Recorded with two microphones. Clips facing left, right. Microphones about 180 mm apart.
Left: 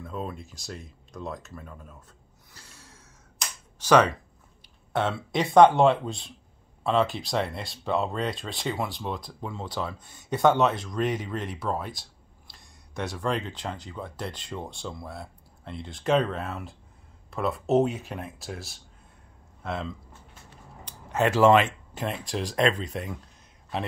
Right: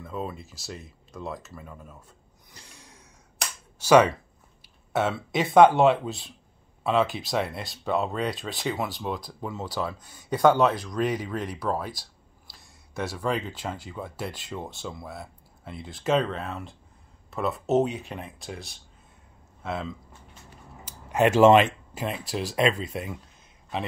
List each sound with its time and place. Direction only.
0.0 s speech: centre (ahead or behind)
2.5 s sigh: 15° right (ahead or behind)
3.8 s speech: 10° right (ahead or behind)
20.8 s speech: 15° right (ahead or behind)
21.9 s speech: 5° right (ahead or behind)